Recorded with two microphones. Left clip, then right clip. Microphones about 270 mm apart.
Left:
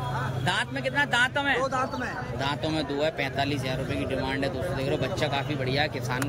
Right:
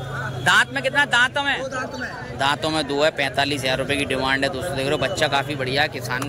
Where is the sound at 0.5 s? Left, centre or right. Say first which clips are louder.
Right 11 dB; centre.